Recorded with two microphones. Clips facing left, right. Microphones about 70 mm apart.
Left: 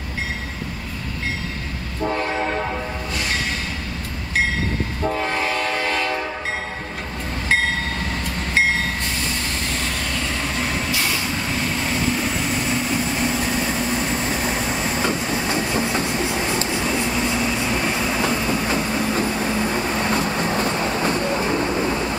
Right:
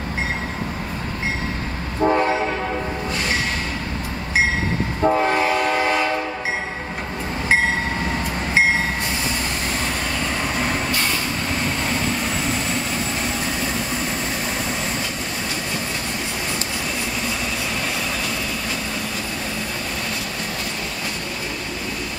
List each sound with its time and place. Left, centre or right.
2.0 s train: right
5.0 s train: centre
10.6 s vehicle: centre
17.7 s vehicle: centre